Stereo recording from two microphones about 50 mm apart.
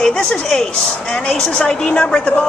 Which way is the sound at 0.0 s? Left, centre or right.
Centre.